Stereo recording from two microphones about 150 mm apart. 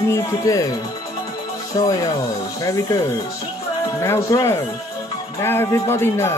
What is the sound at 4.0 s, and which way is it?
A man's voice, 20° left (ahead or behind).